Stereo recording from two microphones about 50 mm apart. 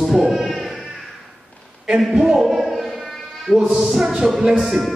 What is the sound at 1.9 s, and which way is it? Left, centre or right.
Speech, centre.